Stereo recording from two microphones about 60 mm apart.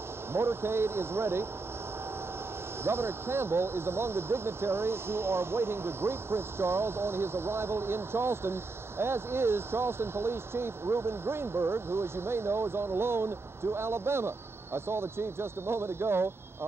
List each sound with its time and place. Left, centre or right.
0.3 s speech: right
2.8 s speech: right